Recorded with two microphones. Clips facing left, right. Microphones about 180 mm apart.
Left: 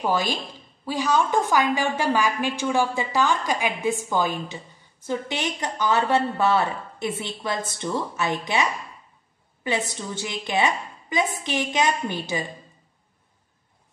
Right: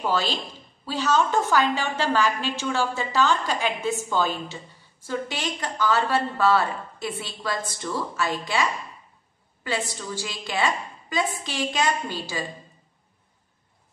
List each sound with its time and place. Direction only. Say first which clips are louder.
0.0 s a woman's voice: left 1 dB; 15° left (ahead or behind)